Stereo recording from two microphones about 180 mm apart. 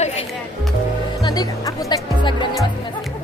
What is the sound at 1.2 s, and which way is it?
Music, 20° left (ahead or behind).